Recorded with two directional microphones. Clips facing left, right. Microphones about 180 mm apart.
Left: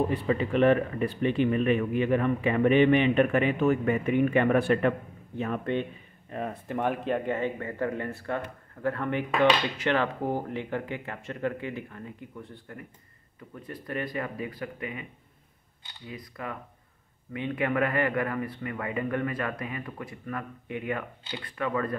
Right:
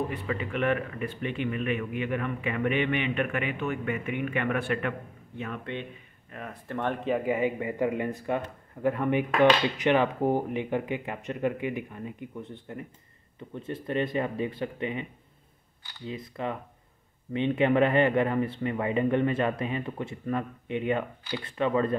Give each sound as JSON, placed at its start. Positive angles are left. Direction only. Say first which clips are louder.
{"t": 0.1, "sound": "speech", "louder": "left 6 dB", "side_deg": 35}
{"t": 6.7, "sound": "speech", "louder": "even", "side_deg": 10}
{"t": 16.1, "sound": "speech", "louder": "right 5 dB", "side_deg": -25}